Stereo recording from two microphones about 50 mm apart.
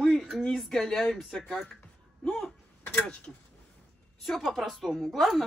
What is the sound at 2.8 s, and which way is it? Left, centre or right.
Speech, left.